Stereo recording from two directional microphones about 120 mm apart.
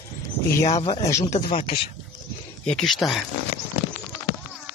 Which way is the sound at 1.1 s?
25° left (ahead or behind).